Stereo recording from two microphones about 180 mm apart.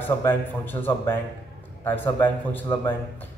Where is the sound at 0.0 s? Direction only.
10° left (ahead or behind).